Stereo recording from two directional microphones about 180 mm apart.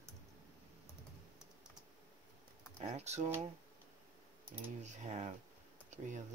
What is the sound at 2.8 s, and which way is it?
Speech, 35° right (ahead or behind).